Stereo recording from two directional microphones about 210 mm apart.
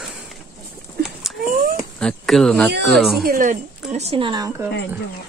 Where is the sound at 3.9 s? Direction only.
30° right (ahead or behind).